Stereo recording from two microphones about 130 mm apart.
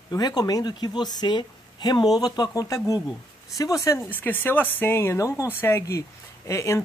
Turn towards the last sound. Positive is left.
turn(degrees=20)  # may be behind; listen again after turning